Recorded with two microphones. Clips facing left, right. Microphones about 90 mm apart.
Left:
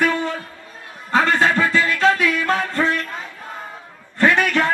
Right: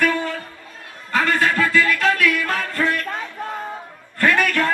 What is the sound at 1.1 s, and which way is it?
Music, 25° left (ahead or behind).